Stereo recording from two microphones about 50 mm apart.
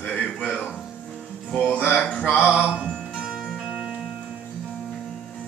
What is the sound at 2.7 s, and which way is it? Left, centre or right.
Music, centre.